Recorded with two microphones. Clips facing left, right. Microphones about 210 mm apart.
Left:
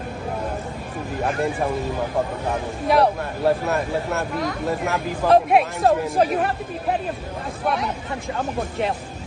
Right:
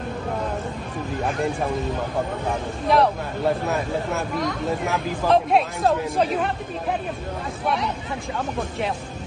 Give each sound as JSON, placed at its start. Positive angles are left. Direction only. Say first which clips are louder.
{"t": 1.2, "sound": "speech", "louder": "left 2 dB", "side_deg": 0}
{"t": 2.9, "sound": "speech", "louder": "left 1 dB", "side_deg": 5}